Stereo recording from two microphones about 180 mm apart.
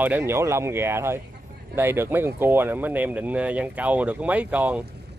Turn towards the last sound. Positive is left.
turn(degrees=-10)  # may be behind; listen again after turning